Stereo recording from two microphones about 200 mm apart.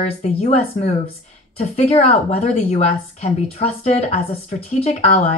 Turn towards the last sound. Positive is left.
turn(degrees=30)  # may be behind; listen again after turning